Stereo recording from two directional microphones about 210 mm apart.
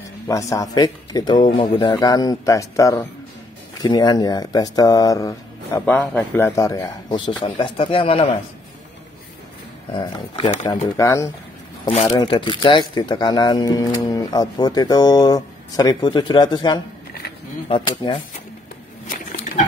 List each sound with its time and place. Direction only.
0.3 s a man's voice: 15° left (ahead or behind)
9.9 s speech: 25° left (ahead or behind)
11.0 s a man's voice: 15° left (ahead or behind)
11.9 s speech: 30° left (ahead or behind)